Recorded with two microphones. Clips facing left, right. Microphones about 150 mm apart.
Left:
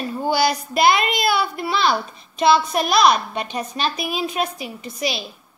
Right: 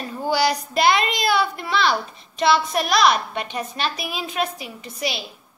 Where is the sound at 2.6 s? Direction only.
30° left (ahead or behind).